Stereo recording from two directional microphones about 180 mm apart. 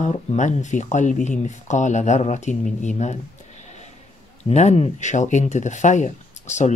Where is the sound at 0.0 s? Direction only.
40° left (ahead or behind).